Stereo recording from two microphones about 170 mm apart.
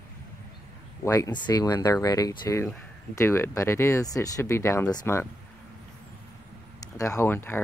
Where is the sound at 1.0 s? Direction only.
20° left (ahead or behind).